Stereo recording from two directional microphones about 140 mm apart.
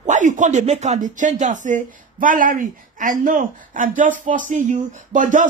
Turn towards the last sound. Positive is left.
turn(degrees=-65)  # may be behind; listen again after turning